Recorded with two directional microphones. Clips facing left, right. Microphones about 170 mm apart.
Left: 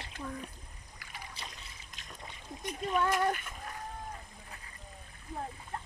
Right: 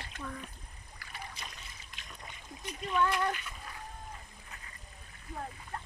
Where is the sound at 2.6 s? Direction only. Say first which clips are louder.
Even; 45° left (ahead or behind).